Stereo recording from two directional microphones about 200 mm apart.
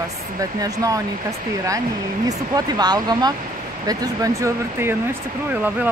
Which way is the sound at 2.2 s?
20° right (ahead or behind).